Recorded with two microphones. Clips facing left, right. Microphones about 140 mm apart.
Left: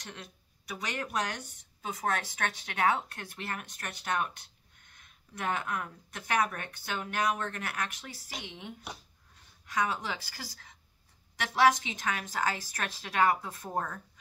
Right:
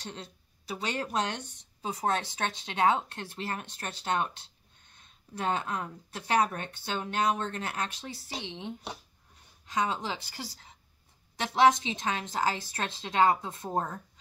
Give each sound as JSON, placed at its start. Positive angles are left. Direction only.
{"t": 0.0, "sound": "speech", "side_deg": -30}